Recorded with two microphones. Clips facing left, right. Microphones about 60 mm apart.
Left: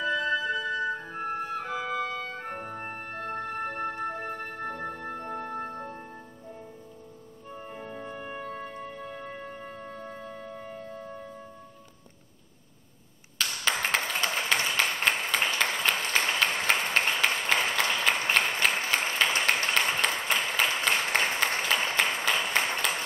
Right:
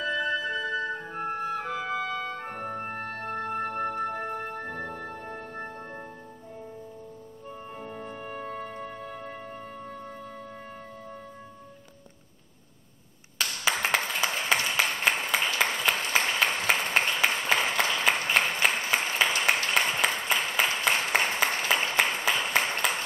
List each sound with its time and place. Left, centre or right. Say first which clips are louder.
0.0 s flute: left 1 dB; centre
3.0 s music: right 2 dB; right
3.3 s music: right 1 dB; centre
7.7 s music: left 1 dB; centre
13.4 s clapping: right 1 dB; centre
18.3 s a sound: right 1 dB; centre